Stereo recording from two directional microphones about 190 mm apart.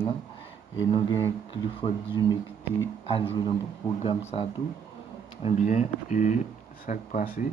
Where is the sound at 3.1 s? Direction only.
30° left (ahead or behind).